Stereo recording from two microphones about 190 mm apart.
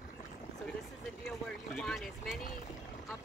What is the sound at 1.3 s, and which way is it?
Vehicle, 5° left (ahead or behind).